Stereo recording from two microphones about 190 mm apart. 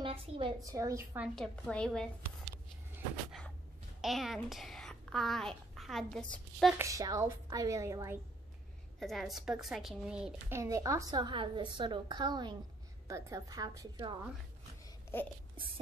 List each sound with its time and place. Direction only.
0.0 s a woman's voice: 25° right (ahead or behind)
0.7 s a woman's voice: 15° right (ahead or behind)
1.3 s a woman's voice: 5° left (ahead or behind)
3.3 s a sound: centre (ahead or behind)
4.0 s a woman's voice: centre (ahead or behind)
6.8 s a woman's voice: 15° right (ahead or behind)
9.0 s a woman's voice: centre (ahead or behind)
10.6 s a woman's voice: 15° right (ahead or behind)
15.1 s a sound: 10° left (ahead or behind)